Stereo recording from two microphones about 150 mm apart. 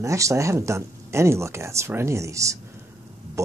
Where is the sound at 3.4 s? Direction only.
20° right (ahead or behind).